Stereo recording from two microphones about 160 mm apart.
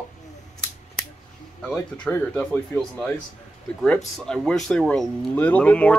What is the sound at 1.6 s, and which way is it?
Speech, 10° left (ahead or behind).